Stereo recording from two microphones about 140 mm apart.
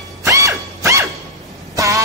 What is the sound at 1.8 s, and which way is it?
Music, 25° right (ahead or behind).